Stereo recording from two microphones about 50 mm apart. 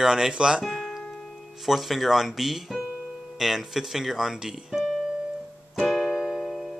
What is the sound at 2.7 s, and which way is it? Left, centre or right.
Piano, right.